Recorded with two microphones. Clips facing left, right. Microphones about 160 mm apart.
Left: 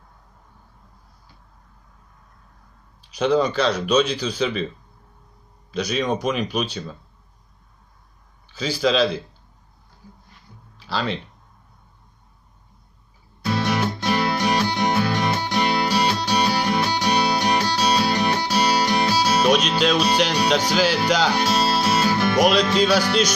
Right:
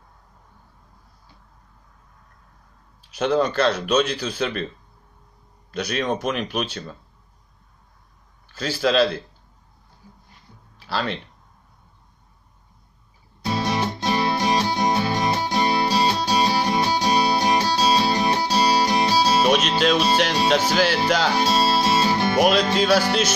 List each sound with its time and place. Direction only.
3.2 s speech: centre (ahead or behind)
5.7 s speech: 5° right (ahead or behind)
8.5 s speech: 5° right (ahead or behind)
10.9 s speech: centre (ahead or behind)
13.4 s music: 35° right (ahead or behind)
19.4 s music: 5° right (ahead or behind)
19.8 s speech: centre (ahead or behind)
21.4 s music: 30° right (ahead or behind)
22.4 s speech: 5° right (ahead or behind)